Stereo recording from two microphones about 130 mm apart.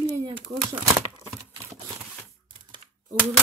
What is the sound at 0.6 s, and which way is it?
Crumpling, 30° right (ahead or behind).